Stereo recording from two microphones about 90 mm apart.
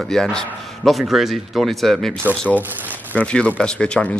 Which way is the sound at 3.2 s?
15° left (ahead or behind).